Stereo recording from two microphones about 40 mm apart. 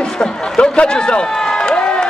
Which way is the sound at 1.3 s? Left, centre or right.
Centre.